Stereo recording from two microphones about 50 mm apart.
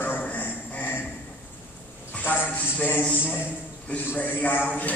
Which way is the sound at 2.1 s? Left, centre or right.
Left.